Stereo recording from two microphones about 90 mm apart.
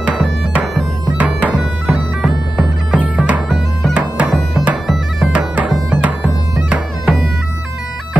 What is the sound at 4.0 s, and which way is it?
Music, 15° right (ahead or behind).